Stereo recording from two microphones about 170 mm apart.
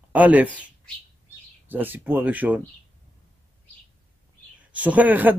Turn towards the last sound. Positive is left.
turn(degrees=-10)  # may be behind; listen again after turning